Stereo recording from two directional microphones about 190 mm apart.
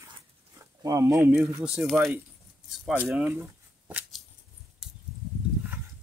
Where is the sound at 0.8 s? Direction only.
20° right (ahead or behind).